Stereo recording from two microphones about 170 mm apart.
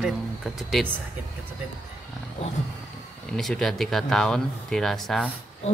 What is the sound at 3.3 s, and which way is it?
Speech, 5° left (ahead or behind).